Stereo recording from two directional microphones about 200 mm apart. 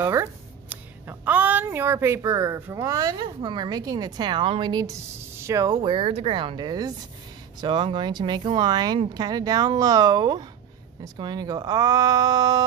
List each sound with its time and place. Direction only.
0.0 s speech: 15° right (ahead or behind)